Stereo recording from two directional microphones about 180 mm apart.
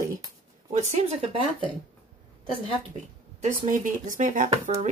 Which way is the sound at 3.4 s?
40° right (ahead or behind).